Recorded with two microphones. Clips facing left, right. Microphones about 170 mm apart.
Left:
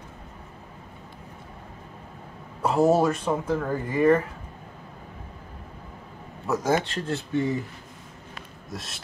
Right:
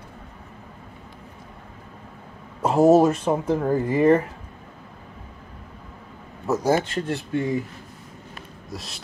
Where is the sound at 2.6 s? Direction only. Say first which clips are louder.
Right 5 dB; 25° right (ahead or behind).